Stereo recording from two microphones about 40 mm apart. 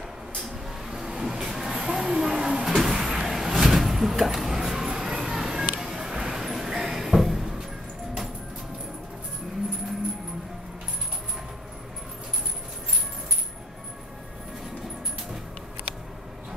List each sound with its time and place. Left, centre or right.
0.8 s vehicle: centre